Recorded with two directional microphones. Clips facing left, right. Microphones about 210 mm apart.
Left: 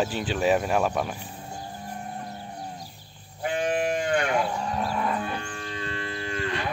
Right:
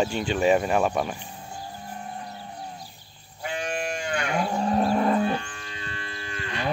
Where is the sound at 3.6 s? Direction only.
35° left (ahead or behind).